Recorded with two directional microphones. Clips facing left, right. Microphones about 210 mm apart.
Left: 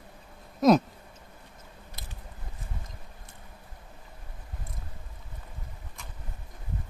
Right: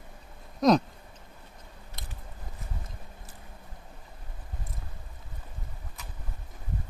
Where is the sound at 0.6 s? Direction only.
5° left (ahead or behind).